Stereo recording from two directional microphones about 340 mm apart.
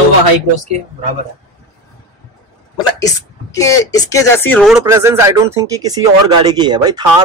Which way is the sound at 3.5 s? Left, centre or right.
Centre.